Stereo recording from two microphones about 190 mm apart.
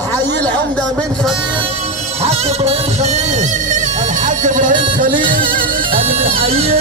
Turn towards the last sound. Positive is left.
turn(degrees=-30)  # may be behind; listen again after turning